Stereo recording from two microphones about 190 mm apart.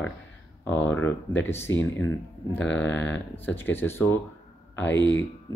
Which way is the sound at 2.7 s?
75° left (ahead or behind).